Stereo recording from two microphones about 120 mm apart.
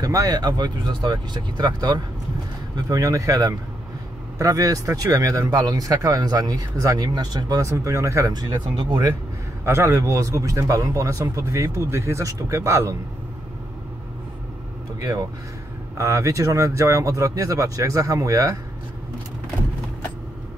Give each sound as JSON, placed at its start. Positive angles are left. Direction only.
{"t": 0.0, "sound": "speech", "side_deg": -30}
{"t": 9.7, "sound": "speech", "side_deg": -25}
{"t": 16.0, "sound": "speech", "side_deg": -25}